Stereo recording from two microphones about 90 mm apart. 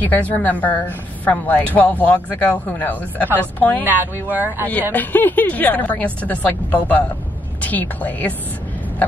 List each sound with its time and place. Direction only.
0.0 s a woman's voice: 20° left (ahead or behind)
3.8 s speech: 20° right (ahead or behind)
4.9 s a woman's voice: 20° left (ahead or behind)